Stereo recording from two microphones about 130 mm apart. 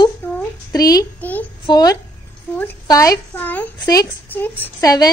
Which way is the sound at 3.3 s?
15° left (ahead or behind).